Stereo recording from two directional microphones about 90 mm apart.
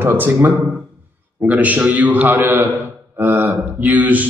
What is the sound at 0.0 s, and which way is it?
A man's voice, 25° right (ahead or behind).